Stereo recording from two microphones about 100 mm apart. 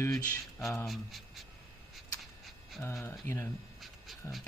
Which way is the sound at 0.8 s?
Centre (ahead or behind).